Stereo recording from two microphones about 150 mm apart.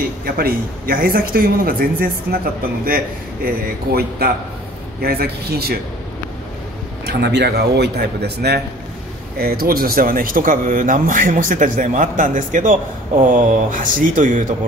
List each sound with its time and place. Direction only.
0.2 s speech: 80° right
3.4 s speech: 90° right
7.1 s speech: 90° right; by 14.4 s 60° right (ahead or behind)